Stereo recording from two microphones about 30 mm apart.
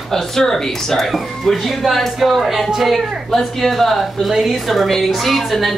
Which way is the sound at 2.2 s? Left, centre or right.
Centre.